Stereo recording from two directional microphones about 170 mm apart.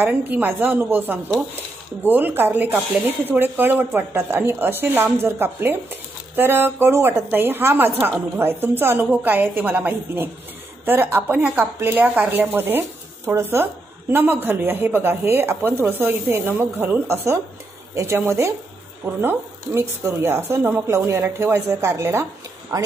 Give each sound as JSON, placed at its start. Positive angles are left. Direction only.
{"t": 0.0, "sound": "a woman's voice", "side_deg": -10}